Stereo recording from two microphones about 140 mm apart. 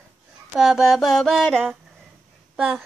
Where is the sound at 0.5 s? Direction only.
Centre (ahead or behind).